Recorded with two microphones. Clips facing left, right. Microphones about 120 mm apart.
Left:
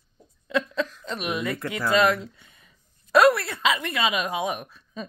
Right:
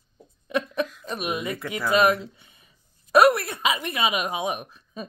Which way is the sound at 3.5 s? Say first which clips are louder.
Left 1 dB; 20° right (ahead or behind).